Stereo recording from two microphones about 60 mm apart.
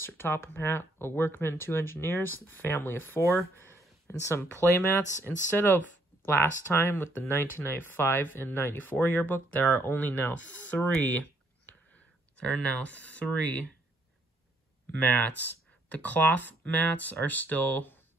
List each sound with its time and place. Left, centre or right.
0.0 s speech: left
3.2 s speech: left
4.3 s speech: left
11.0 s a sound: left
12.4 s speech: left
15.0 s speech: left